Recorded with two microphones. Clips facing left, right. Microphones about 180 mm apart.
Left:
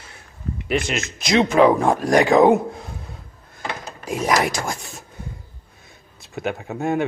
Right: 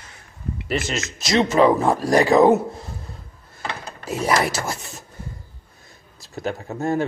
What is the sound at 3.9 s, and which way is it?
Speech, 10° left (ahead or behind).